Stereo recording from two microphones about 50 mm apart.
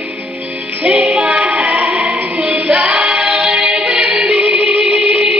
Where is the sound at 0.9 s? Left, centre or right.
Right.